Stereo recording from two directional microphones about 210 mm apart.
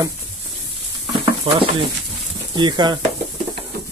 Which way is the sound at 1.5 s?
25° right (ahead or behind).